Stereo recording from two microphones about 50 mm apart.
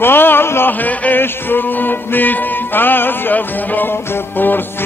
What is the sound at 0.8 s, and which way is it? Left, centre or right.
Music, left.